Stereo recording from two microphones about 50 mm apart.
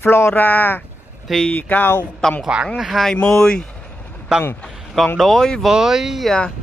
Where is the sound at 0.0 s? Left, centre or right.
Left.